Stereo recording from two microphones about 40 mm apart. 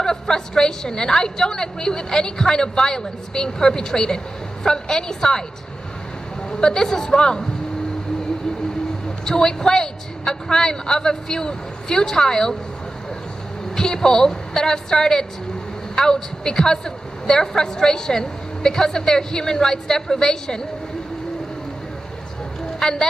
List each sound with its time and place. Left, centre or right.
0.0 s a woman's voice: centre
6.5 s a woman's voice: centre
9.2 s a woman's voice: centre
13.7 s a woman's voice: centre
22.8 s speech: centre